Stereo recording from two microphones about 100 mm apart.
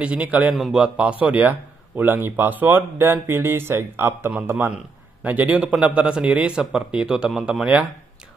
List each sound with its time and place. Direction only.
0.0 s a man's voice: 15° right (ahead or behind)